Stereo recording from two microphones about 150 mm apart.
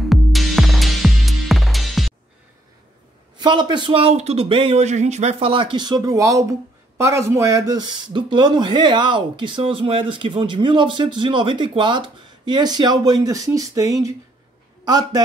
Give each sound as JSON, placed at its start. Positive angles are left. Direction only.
{"t": 0.0, "sound": "music", "side_deg": 0}
{"t": 3.3, "sound": "a man's voice", "side_deg": -30}